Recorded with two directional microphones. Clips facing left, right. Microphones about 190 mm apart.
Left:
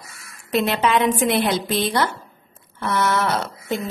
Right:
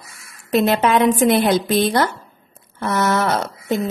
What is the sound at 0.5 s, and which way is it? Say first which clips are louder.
A woman's voice: right 4 dB; 45° right (ahead or behind).